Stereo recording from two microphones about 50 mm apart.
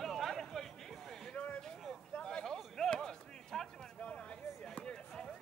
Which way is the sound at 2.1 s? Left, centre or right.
Centre.